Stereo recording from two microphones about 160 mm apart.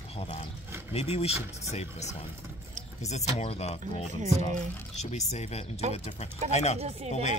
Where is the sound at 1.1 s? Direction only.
40° left (ahead or behind).